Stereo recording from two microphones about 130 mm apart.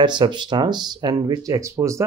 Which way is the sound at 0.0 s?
35° right (ahead or behind).